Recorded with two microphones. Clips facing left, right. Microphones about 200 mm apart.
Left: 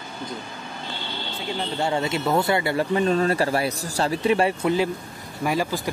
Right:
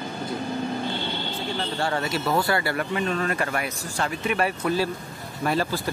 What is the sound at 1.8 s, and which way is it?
Speech, 25° left (ahead or behind).